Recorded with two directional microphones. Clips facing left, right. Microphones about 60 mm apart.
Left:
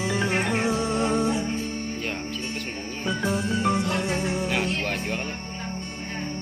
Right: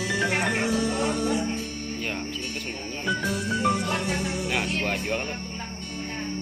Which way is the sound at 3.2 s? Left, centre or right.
Left.